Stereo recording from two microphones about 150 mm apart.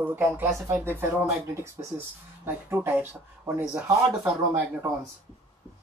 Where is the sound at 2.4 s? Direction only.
15° right (ahead or behind).